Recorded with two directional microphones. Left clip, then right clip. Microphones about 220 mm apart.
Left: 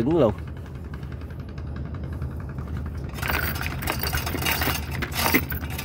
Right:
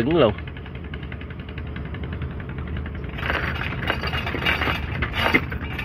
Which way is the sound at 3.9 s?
25° left (ahead or behind).